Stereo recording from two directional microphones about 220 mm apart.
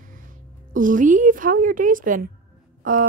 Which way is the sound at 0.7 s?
35° right (ahead or behind).